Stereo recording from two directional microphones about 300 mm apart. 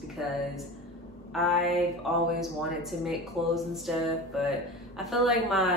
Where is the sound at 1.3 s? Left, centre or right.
Centre.